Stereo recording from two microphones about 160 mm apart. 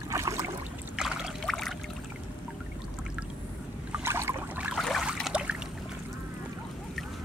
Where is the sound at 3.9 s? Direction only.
15° right (ahead or behind).